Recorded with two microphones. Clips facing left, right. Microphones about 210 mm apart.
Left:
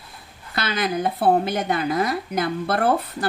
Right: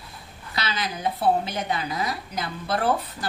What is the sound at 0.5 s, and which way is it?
A woman's voice, 55° left (ahead or behind).